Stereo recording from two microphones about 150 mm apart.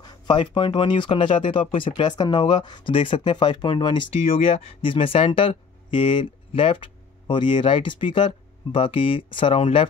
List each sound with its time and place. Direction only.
0.0 s speech: 30° left (ahead or behind)